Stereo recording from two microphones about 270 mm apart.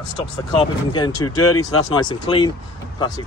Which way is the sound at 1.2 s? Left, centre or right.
Left.